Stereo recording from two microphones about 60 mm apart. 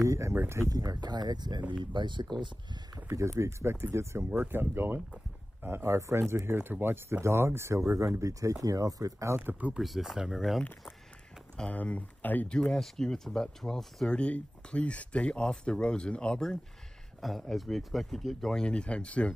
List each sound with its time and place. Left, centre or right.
0.0 s speech: right
0.3 s speech: right
0.7 s speech: right
1.8 s speech: centre
3.2 s speech: right
4.4 s speech: right
9.4 s speech: right
9.8 s speech: centre
11.7 s speech: left
12.7 s speech: centre
14.1 s speech: centre
17.2 s speech: centre
18.7 s speech: centre